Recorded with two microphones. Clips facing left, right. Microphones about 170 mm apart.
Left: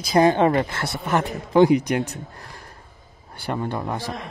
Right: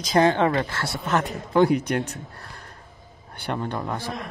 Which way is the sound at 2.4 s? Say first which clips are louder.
Left 1 dB; 10° left (ahead or behind).